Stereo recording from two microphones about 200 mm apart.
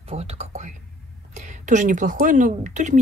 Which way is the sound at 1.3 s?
35° right (ahead or behind).